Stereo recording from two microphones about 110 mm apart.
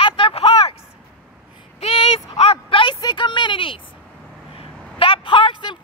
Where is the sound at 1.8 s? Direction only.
55° left (ahead or behind).